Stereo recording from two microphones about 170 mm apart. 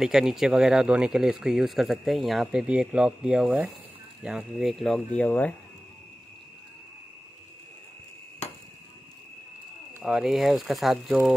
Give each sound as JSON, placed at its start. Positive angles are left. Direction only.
{"t": 0.0, "sound": "speech", "side_deg": -5}
{"t": 10.0, "sound": "speech", "side_deg": -5}